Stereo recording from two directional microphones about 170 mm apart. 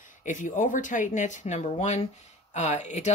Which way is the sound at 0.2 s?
50° left (ahead or behind).